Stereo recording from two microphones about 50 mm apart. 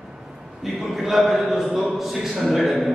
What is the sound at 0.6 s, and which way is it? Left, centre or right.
A man's voice, centre.